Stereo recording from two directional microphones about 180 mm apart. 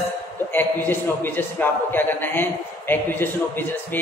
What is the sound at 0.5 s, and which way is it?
A man's voice, 10° left (ahead or behind).